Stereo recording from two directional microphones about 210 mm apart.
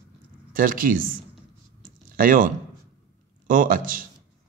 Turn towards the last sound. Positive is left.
turn(degrees=-40)  # may be behind; listen again after turning